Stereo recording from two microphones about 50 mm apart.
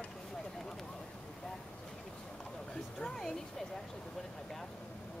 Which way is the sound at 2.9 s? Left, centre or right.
Centre.